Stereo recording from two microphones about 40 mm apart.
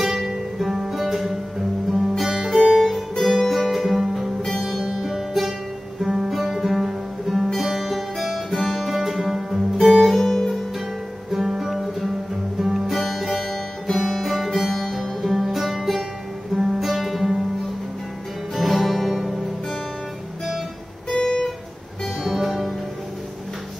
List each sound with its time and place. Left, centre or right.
0.3 s music: centre
5.9 s guitar: centre
6.4 s music: centre
11.3 s music: centre
18.6 s music: centre
21.1 s music: centre
22.2 s music: centre